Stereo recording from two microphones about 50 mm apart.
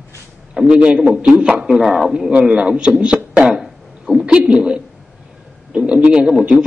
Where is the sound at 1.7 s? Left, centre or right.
Centre.